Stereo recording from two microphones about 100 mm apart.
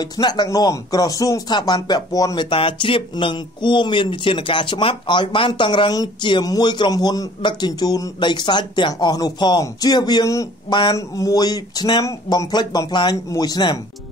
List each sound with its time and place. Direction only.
0.0 s speech: 45° left (ahead or behind)
2.5 s speech: 55° left (ahead or behind); by 10.5 s 35° left (ahead or behind)
10.7 s speech: 50° left (ahead or behind)
11.0 s speech: 35° left (ahead or behind)